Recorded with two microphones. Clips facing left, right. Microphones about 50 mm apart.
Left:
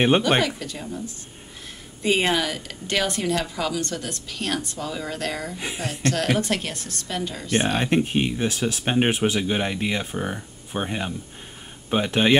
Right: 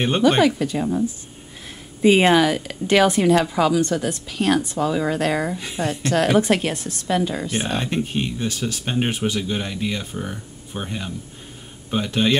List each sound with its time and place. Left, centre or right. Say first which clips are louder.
0.7 s speech: right 11 dB; right
2.0 s a woman's voice: right 7 dB; centre
7.5 s speech: left 7 dB; centre